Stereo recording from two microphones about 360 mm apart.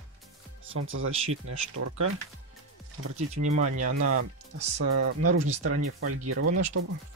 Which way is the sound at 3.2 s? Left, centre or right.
Centre.